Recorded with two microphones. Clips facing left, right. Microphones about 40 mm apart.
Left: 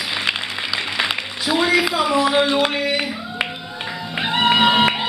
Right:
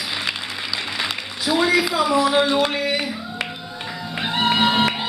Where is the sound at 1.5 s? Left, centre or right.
Centre.